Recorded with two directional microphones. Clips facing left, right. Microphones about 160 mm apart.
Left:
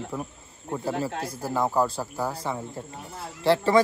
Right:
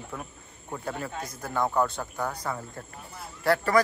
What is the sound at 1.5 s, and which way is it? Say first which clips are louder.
Speech: left 2 dB; 5° left (ahead or behind).